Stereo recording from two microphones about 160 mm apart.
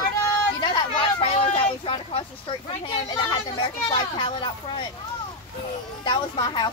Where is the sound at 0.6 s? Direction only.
30° left (ahead or behind).